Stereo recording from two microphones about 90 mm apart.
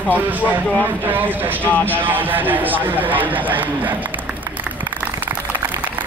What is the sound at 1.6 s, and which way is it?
Speech, 15° left (ahead or behind).